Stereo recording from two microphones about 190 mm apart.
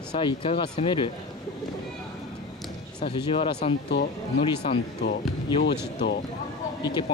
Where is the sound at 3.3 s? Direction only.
30° left (ahead or behind).